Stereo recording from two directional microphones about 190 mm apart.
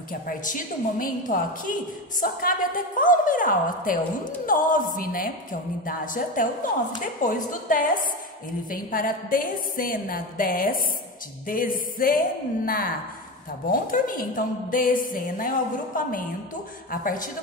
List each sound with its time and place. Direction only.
0.3 s a woman's voice: 45° left (ahead or behind)